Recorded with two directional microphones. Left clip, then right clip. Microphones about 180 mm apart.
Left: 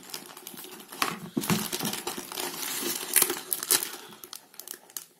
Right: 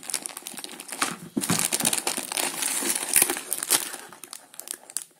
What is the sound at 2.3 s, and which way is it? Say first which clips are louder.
Crumpling: right 4 dB; 25° right (ahead or behind).